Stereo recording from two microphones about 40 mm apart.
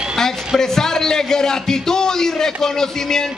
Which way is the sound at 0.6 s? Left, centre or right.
Centre.